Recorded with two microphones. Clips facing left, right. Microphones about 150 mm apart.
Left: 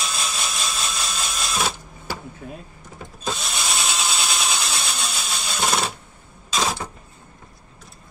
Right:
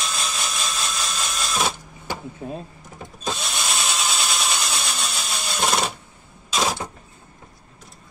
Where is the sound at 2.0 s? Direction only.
30° right (ahead or behind).